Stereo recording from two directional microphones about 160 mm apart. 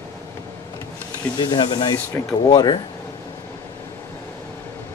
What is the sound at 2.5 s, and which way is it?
Speech, 25° left (ahead or behind).